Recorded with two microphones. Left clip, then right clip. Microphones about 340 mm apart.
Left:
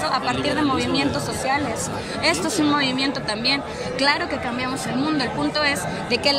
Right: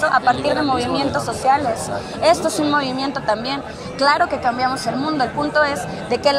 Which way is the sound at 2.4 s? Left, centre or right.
Centre.